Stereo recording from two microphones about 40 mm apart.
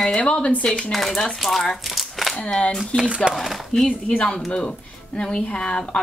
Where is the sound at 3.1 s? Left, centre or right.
Right.